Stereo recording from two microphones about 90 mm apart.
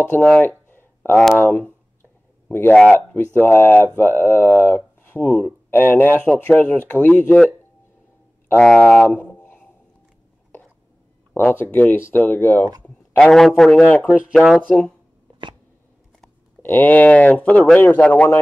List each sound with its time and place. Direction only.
0.1 s a sound: 20° left (ahead or behind)
1.1 s speech: 10° left (ahead or behind)
8.5 s speech: 5° left (ahead or behind)
11.3 s speech: 25° left (ahead or behind)
14.0 s speech: 15° right (ahead or behind)
14.6 s speech: 15° left (ahead or behind)
16.6 s speech: 20° left (ahead or behind)